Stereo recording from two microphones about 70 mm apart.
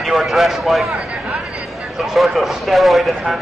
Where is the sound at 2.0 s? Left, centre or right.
Centre.